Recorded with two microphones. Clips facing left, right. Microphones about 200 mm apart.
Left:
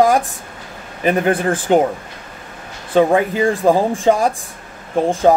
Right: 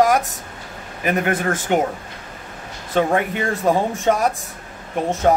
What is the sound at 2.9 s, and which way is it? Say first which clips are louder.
Speech: left 5 dB; 30° left (ahead or behind).